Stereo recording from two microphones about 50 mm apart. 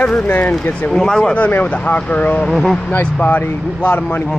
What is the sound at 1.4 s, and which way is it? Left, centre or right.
Speech, left.